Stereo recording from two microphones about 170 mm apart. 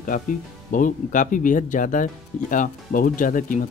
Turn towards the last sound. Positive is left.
turn(degrees=50)  # may be behind; listen again after turning